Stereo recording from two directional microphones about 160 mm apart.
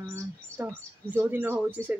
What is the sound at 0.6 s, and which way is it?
Speech, 10° right (ahead or behind).